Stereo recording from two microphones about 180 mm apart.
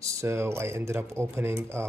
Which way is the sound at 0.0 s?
15° right (ahead or behind).